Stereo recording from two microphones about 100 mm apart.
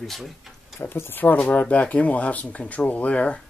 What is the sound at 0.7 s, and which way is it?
Speech, 25° left (ahead or behind).